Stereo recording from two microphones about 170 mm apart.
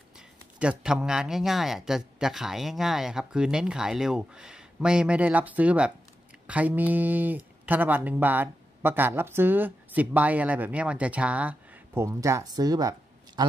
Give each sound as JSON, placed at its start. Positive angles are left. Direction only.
{"t": 0.6, "sound": "a man's voice", "side_deg": -5}